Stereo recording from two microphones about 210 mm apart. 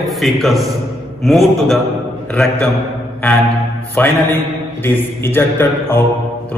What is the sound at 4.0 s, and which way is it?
A man's voice, 10° left (ahead or behind).